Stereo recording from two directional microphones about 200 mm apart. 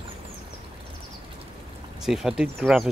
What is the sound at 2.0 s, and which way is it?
Speech, centre (ahead or behind).